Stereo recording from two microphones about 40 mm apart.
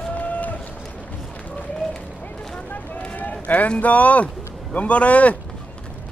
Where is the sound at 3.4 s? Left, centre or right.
Left.